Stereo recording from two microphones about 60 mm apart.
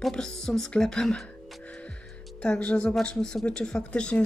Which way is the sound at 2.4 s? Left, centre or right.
Centre.